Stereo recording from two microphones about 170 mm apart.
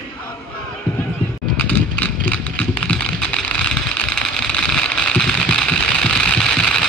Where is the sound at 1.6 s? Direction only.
10° left (ahead or behind).